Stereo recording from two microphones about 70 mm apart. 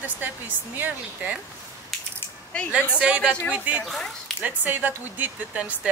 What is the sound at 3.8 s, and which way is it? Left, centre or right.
Speech, centre.